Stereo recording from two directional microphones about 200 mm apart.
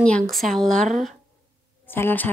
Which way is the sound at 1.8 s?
10° left (ahead or behind).